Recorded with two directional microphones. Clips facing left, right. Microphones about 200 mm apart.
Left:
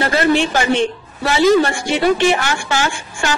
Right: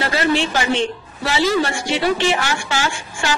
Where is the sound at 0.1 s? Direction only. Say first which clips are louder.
Left 3 dB; 50° left (ahead or behind).